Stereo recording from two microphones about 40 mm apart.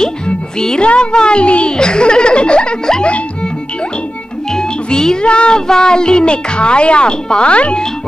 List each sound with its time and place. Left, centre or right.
0.6 s a child's voice: centre
4.6 s a child's voice: centre